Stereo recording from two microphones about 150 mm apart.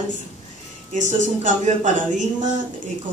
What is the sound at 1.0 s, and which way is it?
Speech, 55° right (ahead or behind).